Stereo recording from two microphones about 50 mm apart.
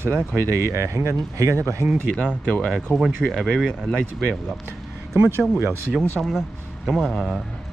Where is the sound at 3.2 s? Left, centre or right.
Centre.